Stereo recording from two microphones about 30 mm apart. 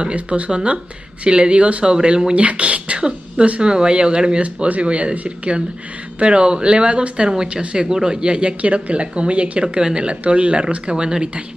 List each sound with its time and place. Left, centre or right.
0.0 s speech: right
2.3 s speech: right
3.0 s throat clearing: right
3.6 s speech: right
4.8 s speech: right
5.1 s speech: right
6.1 s speech: right
8.5 s speech: right
9.8 s speech: right
10.2 s speech: right
10.6 s speech: right